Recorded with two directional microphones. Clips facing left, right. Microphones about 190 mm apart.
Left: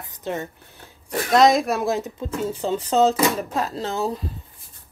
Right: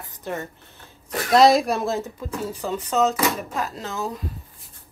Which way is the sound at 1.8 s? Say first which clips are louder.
Left 2 dB; 20° left (ahead or behind).